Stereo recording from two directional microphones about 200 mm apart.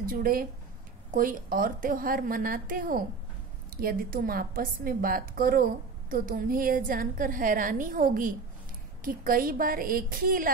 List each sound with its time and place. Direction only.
0.0 s a woman's voice: 45° right (ahead or behind)